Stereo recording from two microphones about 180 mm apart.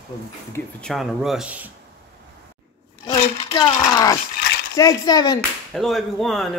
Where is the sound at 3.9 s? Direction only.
20° left (ahead or behind).